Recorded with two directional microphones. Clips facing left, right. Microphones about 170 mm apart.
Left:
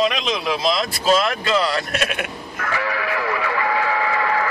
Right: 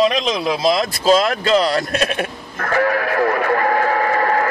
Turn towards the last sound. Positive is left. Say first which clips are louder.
# right 4 dB
turn(degrees=-45)  # may be behind; listen again after turning